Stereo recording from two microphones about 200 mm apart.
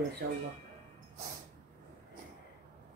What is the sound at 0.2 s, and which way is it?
Speech, 50° right (ahead or behind).